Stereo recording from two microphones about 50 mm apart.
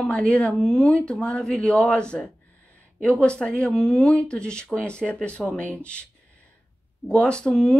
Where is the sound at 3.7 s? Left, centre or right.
Centre; by 5.7 s left.